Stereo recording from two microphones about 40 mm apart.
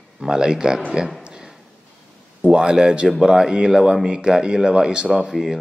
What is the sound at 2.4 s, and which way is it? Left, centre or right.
Speech, centre.